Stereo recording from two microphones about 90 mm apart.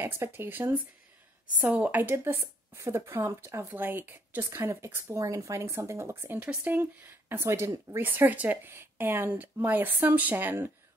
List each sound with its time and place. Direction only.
0.0 s speech: 25° right (ahead or behind)
6.4 s speech: 15° right (ahead or behind)
6.8 s speech: 25° right (ahead or behind)